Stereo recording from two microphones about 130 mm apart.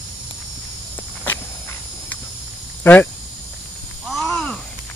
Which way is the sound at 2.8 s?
15° left (ahead or behind).